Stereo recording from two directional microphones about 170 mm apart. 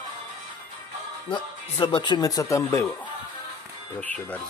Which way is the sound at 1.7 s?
30° left (ahead or behind).